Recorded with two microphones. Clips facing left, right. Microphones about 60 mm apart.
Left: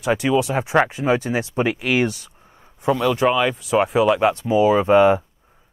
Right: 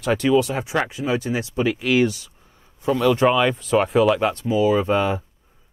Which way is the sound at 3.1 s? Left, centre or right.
Centre.